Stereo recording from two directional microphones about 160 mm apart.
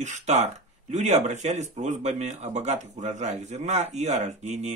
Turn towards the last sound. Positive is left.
turn(degrees=-45)  # may be behind; listen again after turning